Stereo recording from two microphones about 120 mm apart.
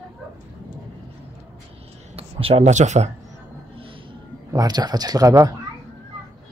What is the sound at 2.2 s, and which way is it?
Speech, 55° right (ahead or behind).